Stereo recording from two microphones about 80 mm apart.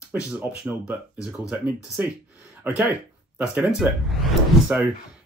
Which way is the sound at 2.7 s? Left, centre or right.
Right.